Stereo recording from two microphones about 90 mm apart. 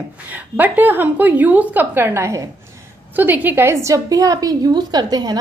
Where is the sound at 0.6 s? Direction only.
20° right (ahead or behind).